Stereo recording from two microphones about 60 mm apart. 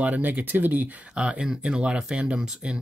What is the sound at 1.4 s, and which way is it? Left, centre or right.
Speech, centre.